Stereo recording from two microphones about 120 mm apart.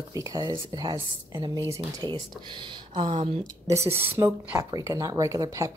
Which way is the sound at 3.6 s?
25° right (ahead or behind).